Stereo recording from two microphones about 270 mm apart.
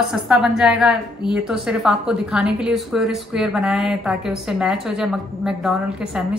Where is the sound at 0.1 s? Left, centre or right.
Centre.